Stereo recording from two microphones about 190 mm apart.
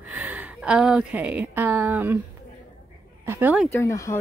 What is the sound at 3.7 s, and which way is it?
Speech, 15° left (ahead or behind).